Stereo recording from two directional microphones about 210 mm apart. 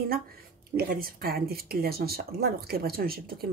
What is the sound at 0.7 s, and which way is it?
Speech, 45° right (ahead or behind).